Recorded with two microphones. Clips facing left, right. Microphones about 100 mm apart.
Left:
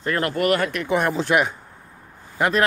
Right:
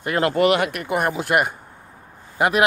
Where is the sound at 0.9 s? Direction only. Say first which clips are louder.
Left 1 dB; 5° right (ahead or behind).